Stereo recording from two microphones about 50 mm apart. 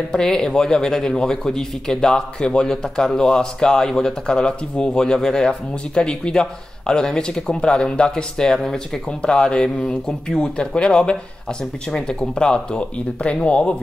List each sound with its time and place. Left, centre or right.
0.1 s speech: centre